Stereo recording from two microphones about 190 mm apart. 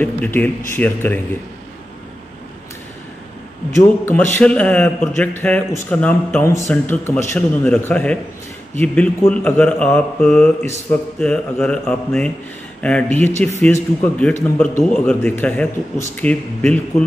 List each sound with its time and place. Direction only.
0.0 s a man's voice: 10° left (ahead or behind)
4.0 s a man's voice: 10° left (ahead or behind)